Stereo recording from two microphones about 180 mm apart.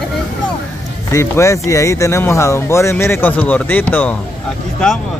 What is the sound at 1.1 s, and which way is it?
Speech, 15° left (ahead or behind).